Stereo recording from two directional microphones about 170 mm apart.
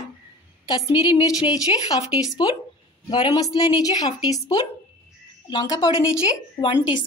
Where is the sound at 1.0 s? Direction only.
25° left (ahead or behind).